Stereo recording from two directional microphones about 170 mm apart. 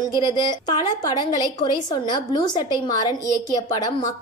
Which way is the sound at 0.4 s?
25° left (ahead or behind).